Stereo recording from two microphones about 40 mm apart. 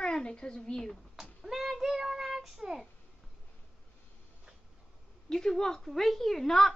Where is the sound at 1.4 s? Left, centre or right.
Centre.